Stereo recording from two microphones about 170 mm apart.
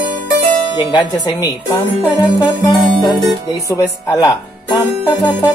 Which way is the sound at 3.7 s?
20° left (ahead or behind).